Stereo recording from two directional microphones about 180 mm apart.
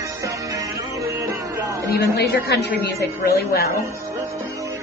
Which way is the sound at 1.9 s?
60° left (ahead or behind).